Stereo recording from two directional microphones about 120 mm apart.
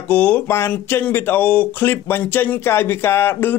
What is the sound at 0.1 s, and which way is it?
Speech, 15° left (ahead or behind).